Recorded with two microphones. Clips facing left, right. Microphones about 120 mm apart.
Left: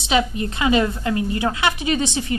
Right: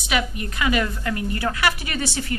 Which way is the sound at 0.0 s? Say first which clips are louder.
Left 5 dB; 25° left (ahead or behind).